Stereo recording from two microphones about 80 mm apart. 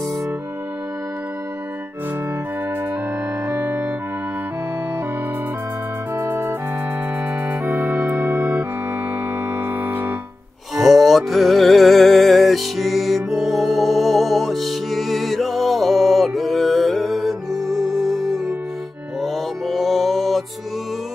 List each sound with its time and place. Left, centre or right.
3.4 s organ: right
6.1 s music: right
10.8 s music: centre